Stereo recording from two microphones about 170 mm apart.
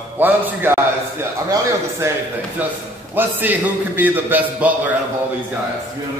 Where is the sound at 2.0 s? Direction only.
15° right (ahead or behind).